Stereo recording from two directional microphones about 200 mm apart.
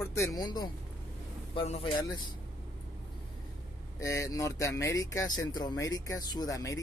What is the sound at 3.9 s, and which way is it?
Speech, 15° left (ahead or behind).